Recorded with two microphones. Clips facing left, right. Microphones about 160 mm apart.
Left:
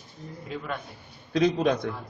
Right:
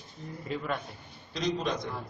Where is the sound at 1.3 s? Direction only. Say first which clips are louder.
Left 8 dB; 60° left (ahead or behind).